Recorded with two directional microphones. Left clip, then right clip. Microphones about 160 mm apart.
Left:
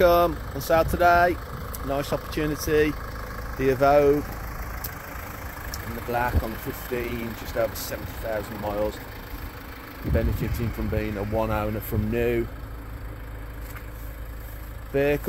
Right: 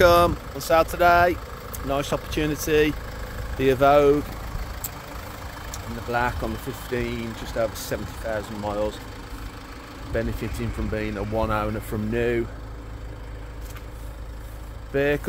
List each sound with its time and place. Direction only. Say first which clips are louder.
0.0 s speech: right 2 dB; 10° right (ahead or behind)
5.7 s vehicle: right 1 dB; 5° left (ahead or behind)
7.0 s speech: right 1 dB; 10° left (ahead or behind)
10.1 s speech: right 1 dB; 20° left (ahead or behind)
15.0 s speech: even; 20° left (ahead or behind)